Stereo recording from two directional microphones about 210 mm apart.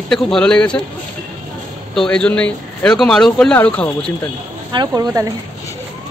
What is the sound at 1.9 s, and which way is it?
Speech, 5° left (ahead or behind).